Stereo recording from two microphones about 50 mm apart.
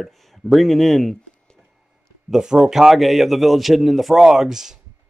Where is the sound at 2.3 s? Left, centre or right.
Centre.